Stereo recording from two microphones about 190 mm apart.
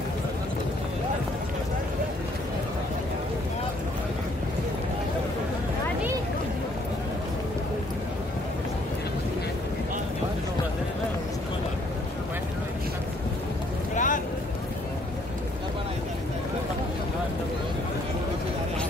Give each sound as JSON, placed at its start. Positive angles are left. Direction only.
{"t": 13.9, "sound": "vehicle", "side_deg": 45}